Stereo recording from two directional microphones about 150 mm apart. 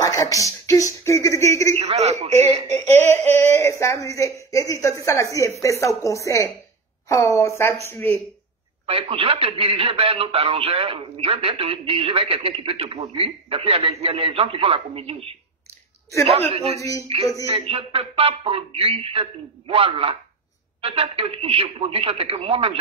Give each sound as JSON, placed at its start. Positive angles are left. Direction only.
{"t": 0.0, "sound": "speech", "side_deg": 20}
{"t": 1.8, "sound": "a man's voice", "side_deg": -45}
{"t": 3.0, "sound": "speech", "side_deg": 15}
{"t": 8.8, "sound": "a man's voice", "side_deg": -40}
{"t": 16.5, "sound": "a man's voice", "side_deg": -45}